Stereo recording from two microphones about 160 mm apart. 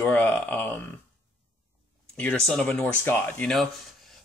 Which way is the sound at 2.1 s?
5° left (ahead or behind).